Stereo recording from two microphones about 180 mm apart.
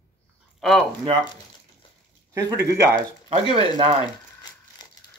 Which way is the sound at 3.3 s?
30° right (ahead or behind).